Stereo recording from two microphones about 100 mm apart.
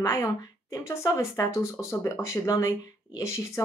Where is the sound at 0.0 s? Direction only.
35° left (ahead or behind).